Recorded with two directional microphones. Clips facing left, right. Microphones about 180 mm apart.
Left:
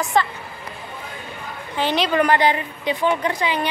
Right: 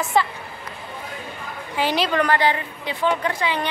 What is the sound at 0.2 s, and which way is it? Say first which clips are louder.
Speech: even; 5° right (ahead or behind).